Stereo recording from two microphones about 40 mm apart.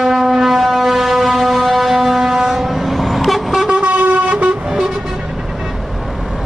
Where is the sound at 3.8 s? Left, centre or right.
Right.